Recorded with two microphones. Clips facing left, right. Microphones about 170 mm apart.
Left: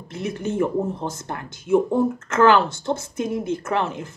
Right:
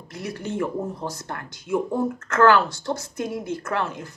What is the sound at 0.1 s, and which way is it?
Speech, 25° left (ahead or behind).